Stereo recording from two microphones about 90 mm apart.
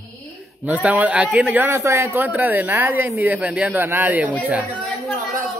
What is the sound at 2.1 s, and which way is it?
Speech, 20° right (ahead or behind).